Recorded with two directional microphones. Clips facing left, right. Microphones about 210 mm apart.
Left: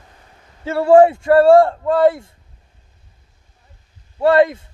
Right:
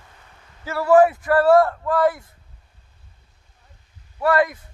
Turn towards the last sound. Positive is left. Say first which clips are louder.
# left 6 dB
turn(degrees=25)  # may be behind; listen again after turning